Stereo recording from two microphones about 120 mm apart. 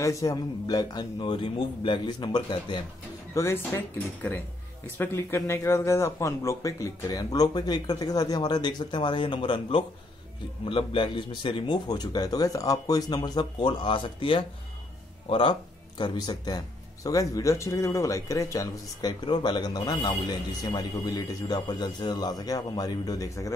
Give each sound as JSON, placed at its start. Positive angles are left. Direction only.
{"t": 0.0, "sound": "speech", "side_deg": 25}
{"t": 3.3, "sound": "speech", "side_deg": 20}
{"t": 16.0, "sound": "speech", "side_deg": 35}